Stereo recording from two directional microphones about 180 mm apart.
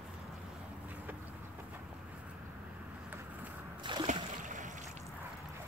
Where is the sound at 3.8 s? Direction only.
25° right (ahead or behind).